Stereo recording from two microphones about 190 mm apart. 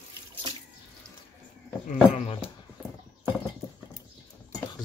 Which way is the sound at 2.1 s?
35° left (ahead or behind).